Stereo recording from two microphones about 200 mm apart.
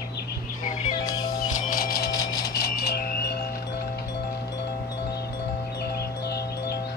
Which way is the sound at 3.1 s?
50° left (ahead or behind).